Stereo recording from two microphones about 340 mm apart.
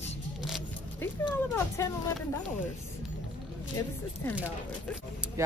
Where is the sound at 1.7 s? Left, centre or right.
Centre.